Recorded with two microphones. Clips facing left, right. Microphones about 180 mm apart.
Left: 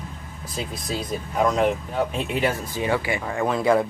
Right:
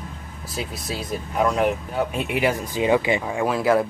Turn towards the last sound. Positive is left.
turn(degrees=-5)  # may be behind; listen again after turning